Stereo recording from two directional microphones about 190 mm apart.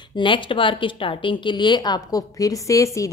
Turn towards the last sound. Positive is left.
turn(degrees=15)  # may be behind; listen again after turning